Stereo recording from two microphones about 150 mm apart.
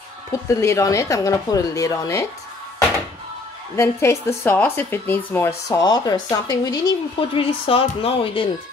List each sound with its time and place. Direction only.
0.3 s speech: 20° left (ahead or behind)
3.7 s a woman's voice: 20° left (ahead or behind)
5.7 s speech: 25° left (ahead or behind)